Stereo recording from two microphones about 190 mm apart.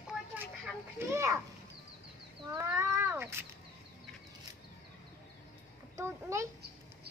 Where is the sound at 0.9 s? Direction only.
15° right (ahead or behind).